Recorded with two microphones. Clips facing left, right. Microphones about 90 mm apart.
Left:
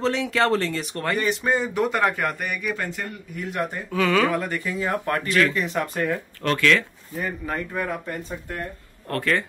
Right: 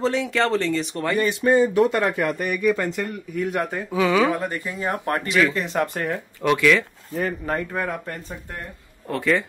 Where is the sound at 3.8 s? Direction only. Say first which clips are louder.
Right 1 dB; 15° right (ahead or behind).